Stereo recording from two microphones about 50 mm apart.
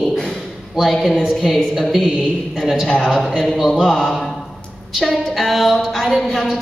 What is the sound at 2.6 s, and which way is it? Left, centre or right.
Speech, centre.